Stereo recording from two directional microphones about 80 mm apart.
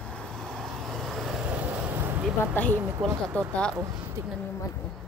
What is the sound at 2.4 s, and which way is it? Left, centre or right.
Speech, left.